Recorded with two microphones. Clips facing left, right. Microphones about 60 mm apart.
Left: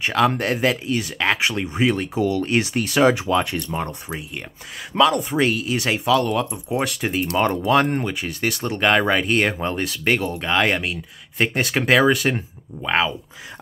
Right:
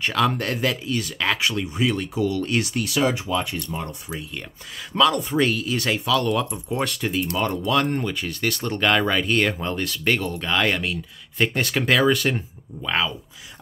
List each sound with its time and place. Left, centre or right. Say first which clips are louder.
0.0 s speech: left 3 dB; centre
2.7 s speech: left 3 dB; left
3.0 s speech: left 6 dB; left
4.9 s speech: left 2 dB; centre
6.2 s speech: left 1 dB; centre
7.0 s speech: left 3 dB; left